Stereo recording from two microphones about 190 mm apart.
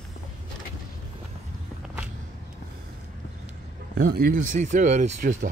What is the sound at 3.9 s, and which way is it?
Speech, 50° right (ahead or behind).